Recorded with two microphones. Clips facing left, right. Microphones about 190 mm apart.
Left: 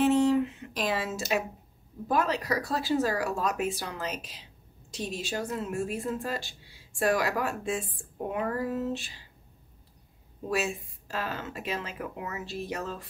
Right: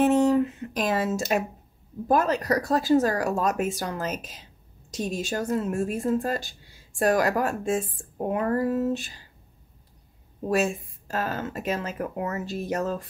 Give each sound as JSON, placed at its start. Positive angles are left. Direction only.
{"t": 0.0, "sound": "a woman's voice", "side_deg": -45}
{"t": 10.5, "sound": "a woman's voice", "side_deg": -45}